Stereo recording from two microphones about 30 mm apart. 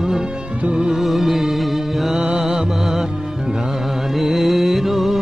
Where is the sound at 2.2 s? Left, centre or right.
Centre.